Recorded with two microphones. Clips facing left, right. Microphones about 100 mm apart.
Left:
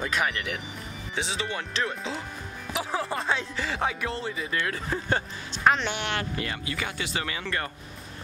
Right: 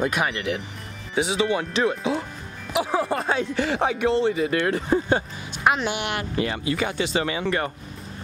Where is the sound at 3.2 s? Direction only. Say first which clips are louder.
Right 6 dB; 55° right (ahead or behind).